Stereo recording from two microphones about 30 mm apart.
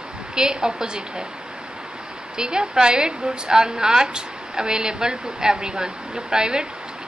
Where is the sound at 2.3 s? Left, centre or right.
Right.